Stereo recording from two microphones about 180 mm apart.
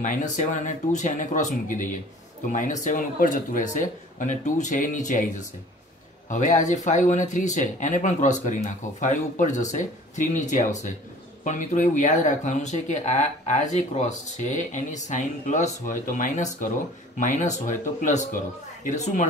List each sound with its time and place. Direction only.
0.0 s speech: 45° left (ahead or behind)